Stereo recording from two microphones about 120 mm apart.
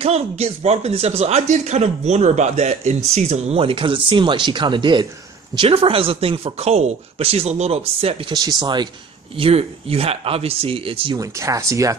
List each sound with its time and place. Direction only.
0.0 s speech: 60° right (ahead or behind); by 5.0 s 40° right (ahead or behind)
5.6 s speech: 50° right (ahead or behind)
8.3 s speech: 35° right (ahead or behind)
9.4 s speech: 55° right (ahead or behind)
11.1 s speech: 25° right (ahead or behind)